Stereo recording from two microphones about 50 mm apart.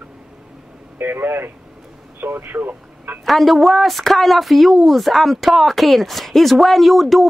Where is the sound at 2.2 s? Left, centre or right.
Right.